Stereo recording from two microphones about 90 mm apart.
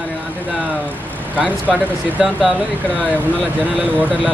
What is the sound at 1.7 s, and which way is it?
Speech, 5° right (ahead or behind).